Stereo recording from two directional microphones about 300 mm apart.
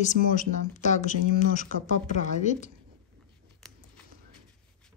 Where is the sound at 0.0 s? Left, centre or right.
Left.